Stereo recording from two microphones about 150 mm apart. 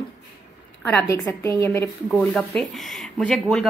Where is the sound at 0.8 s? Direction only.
20° left (ahead or behind).